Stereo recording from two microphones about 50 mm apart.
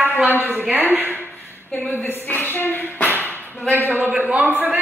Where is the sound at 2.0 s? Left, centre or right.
Left.